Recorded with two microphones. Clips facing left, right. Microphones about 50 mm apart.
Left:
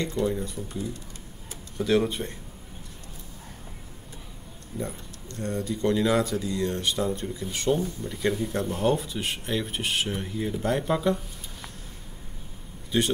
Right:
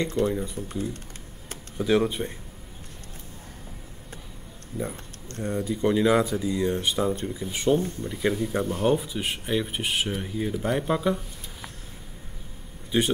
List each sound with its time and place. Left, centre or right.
0.3 s speech: centre
0.6 s speech: right
1.8 s speech: centre
5.4 s speech: centre
12.9 s speech: centre